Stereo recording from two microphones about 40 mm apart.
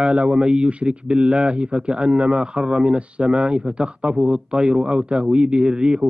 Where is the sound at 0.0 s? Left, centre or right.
Right.